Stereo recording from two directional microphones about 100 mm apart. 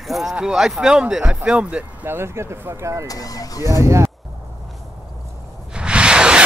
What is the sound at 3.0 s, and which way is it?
Speech, 35° left (ahead or behind).